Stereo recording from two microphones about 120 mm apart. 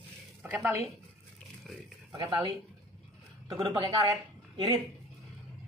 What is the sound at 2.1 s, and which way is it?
Speech, 40° right (ahead or behind).